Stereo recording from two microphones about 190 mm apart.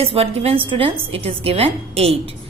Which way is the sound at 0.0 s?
30° right (ahead or behind).